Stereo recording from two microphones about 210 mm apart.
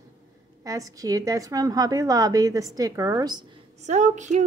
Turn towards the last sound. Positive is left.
turn(degrees=-35)  # may be behind; listen again after turning